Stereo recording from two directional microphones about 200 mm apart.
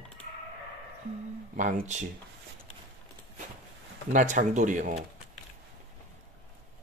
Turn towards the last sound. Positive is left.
turn(degrees=-40)  # may be behind; listen again after turning